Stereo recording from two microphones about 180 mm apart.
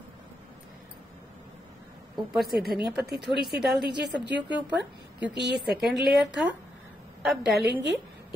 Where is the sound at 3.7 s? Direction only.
65° right (ahead or behind).